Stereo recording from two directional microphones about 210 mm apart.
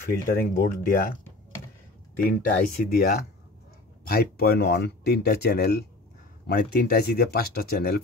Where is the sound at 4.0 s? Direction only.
45° left (ahead or behind).